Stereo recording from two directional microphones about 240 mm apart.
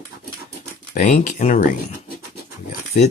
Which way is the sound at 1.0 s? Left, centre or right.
Left.